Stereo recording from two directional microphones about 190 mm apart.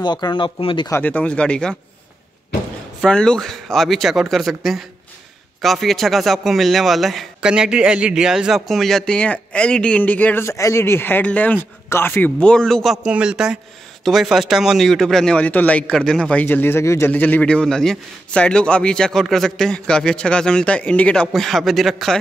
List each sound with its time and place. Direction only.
0.0 s speech: 25° left (ahead or behind)
0.8 s speech: 10° left (ahead or behind)
3.0 s speech: 5° left (ahead or behind)